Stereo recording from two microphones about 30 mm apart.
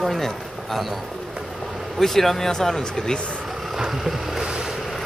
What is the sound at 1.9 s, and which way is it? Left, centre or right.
Speech, centre.